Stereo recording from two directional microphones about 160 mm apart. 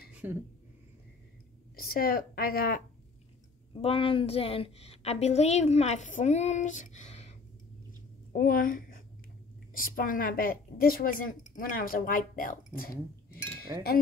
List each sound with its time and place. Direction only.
0.1 s a sound: 10° right (ahead or behind)
1.8 s speech: 70° left (ahead or behind)
3.7 s a woman's voice: 35° left (ahead or behind)
8.3 s a woman's voice: 65° left (ahead or behind)
13.7 s speech: 25° right (ahead or behind)